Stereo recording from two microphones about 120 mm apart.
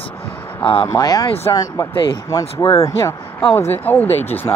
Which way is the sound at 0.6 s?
45° left (ahead or behind).